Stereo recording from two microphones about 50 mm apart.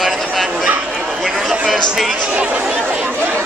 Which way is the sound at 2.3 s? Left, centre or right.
Right.